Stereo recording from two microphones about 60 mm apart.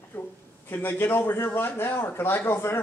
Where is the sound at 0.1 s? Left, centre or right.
Left.